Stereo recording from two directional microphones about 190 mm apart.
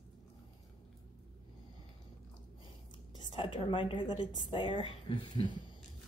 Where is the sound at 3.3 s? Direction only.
25° left (ahead or behind).